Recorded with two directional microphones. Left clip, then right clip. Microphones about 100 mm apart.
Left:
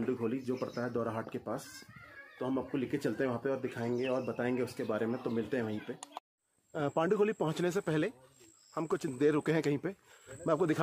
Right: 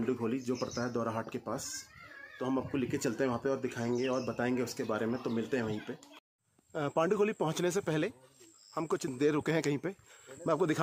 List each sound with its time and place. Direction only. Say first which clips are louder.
0.1 s speech: right 1 dB; 25° right (ahead or behind)
6.7 s a man's voice: right 1 dB; 10° right (ahead or behind)